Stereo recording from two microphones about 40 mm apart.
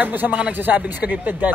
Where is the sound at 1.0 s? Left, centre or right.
Right.